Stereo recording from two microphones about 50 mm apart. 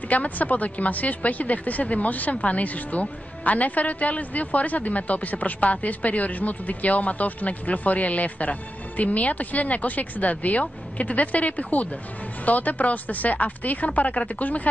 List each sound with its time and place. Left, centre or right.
0.1 s speech: left